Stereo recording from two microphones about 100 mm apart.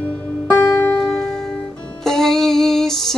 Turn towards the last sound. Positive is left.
turn(degrees=5)  # may be behind; listen again after turning